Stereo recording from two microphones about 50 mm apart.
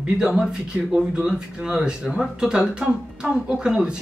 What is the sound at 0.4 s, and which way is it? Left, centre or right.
A man's voice, right.